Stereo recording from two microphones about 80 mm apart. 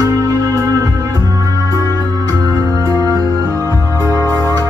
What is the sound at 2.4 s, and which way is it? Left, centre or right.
Music, right.